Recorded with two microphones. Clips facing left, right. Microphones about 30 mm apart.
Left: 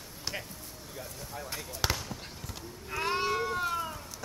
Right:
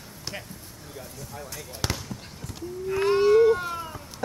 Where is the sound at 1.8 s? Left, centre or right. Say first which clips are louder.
Right 1 dB; centre.